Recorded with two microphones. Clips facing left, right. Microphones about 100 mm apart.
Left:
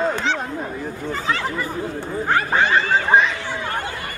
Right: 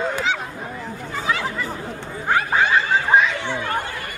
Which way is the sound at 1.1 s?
5° right (ahead or behind).